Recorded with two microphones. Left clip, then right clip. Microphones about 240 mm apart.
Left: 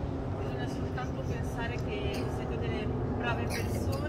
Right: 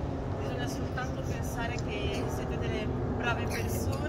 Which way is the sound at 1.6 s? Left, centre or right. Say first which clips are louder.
Right 1 dB; right.